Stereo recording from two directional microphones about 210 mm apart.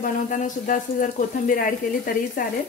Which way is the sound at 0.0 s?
40° left (ahead or behind).